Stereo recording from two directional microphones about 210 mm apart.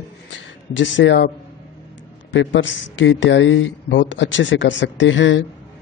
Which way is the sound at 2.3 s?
60° left (ahead or behind).